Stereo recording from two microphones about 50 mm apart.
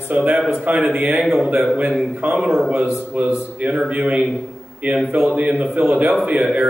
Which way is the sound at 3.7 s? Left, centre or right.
Centre.